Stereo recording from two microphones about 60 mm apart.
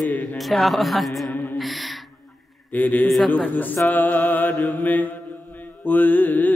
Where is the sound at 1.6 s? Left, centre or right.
Centre.